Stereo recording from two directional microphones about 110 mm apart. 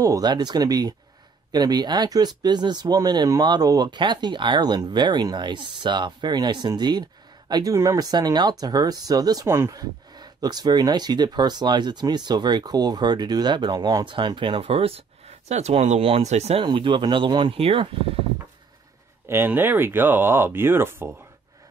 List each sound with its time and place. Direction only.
0.0 s speech: 35° right (ahead or behind)
14.0 s speech: 50° right (ahead or behind); by 16.6 s 75° right (ahead or behind)
16.6 s speech: 50° right (ahead or behind)
17.6 s speech: 65° right (ahead or behind)
19.2 s speech: 20° right (ahead or behind)